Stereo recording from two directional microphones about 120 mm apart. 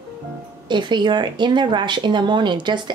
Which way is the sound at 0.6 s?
40° right (ahead or behind).